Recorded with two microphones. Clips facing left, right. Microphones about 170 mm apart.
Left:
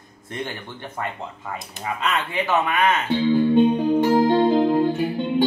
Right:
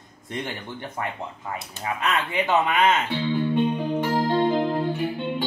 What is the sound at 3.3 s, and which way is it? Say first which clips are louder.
Music: left 6 dB; 40° left (ahead or behind).